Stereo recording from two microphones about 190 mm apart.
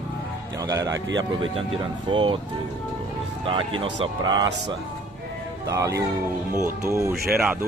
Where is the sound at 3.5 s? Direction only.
25° right (ahead or behind).